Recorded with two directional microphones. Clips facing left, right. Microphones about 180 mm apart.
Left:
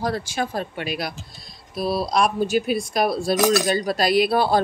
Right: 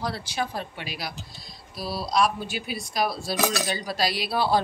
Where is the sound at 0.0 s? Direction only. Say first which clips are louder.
Left 5 dB; 45° left (ahead or behind).